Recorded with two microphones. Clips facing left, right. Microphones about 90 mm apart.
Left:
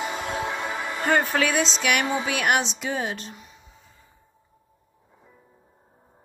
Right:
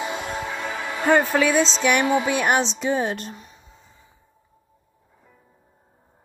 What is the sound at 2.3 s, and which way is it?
Speech, 30° right (ahead or behind).